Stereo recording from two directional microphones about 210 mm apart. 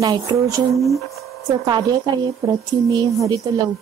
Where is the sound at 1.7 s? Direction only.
20° right (ahead or behind).